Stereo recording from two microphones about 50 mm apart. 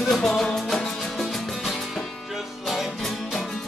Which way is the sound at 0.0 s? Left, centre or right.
Centre.